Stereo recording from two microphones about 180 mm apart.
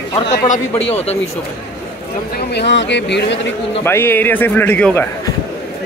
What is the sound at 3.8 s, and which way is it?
A man's voice, 15° left (ahead or behind).